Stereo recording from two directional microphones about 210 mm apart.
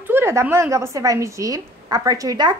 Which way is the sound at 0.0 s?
10° right (ahead or behind).